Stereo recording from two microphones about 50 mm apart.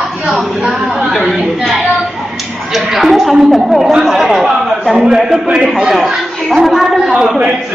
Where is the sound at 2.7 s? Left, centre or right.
Centre.